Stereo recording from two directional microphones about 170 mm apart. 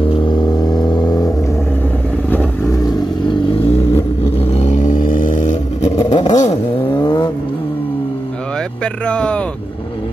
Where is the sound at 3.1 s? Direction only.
30° left (ahead or behind).